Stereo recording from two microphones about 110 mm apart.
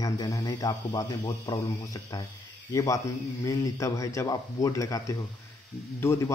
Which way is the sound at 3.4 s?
30° left (ahead or behind).